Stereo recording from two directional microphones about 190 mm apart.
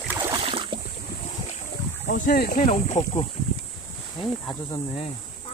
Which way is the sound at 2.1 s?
45° left (ahead or behind).